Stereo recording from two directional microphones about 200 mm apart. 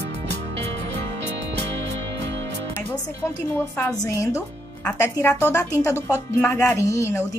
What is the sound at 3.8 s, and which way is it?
A woman's voice, 15° left (ahead or behind).